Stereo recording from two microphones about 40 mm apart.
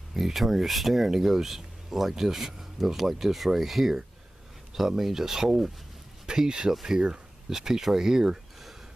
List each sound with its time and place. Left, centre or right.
0.1 s speech: centre
6.7 s speech: centre